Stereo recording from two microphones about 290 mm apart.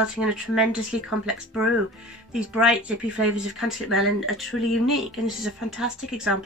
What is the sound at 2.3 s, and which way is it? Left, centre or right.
Speech, centre.